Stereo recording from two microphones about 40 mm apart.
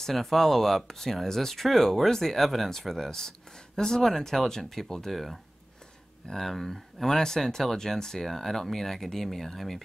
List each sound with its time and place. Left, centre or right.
0.0 s speech: centre